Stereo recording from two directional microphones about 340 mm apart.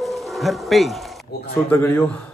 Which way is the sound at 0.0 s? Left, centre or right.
Centre.